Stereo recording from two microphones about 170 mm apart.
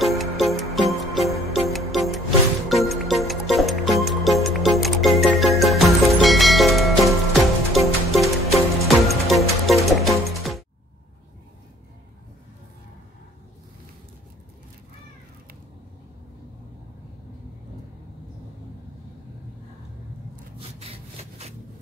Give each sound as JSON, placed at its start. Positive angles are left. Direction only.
{"t": 0.0, "sound": "music", "side_deg": 0}
{"t": 20.5, "sound": "wood", "side_deg": -35}